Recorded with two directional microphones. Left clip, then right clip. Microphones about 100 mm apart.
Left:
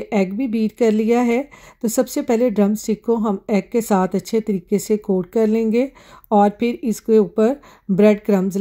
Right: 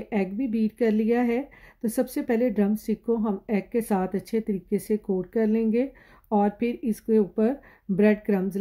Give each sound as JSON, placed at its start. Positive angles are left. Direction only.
{"t": 0.1, "sound": "speech", "side_deg": 45}